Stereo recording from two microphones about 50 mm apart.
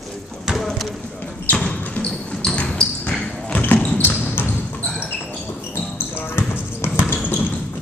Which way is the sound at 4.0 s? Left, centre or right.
Left.